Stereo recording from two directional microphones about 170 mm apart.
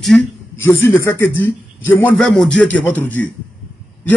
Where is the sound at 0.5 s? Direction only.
15° left (ahead or behind).